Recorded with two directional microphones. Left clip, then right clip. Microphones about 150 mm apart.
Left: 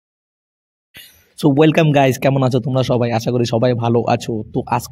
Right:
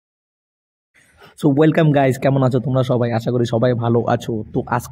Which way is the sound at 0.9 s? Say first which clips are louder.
Left 6 dB; 55° left (ahead or behind).